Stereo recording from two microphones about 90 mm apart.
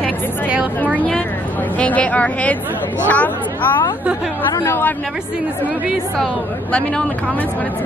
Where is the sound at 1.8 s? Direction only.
15° left (ahead or behind).